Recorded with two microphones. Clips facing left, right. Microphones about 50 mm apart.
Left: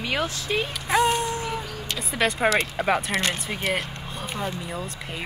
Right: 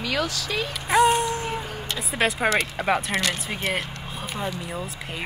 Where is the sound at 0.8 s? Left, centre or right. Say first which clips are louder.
Right 4 dB; right.